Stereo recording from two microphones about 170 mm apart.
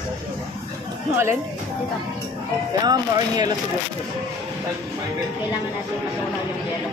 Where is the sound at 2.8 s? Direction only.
25° right (ahead or behind).